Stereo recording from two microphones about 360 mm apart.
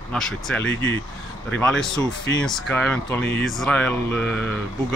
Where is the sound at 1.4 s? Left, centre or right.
Centre.